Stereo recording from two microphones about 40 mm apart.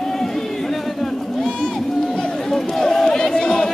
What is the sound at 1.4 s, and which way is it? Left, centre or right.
Run, centre.